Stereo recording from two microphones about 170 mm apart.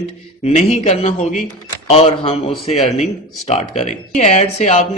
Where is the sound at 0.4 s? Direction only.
40° left (ahead or behind).